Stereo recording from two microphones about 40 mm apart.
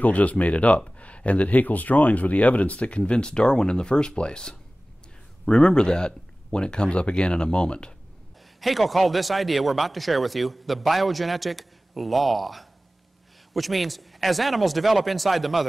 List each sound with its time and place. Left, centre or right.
0.0 s speech: left
8.5 s speech: centre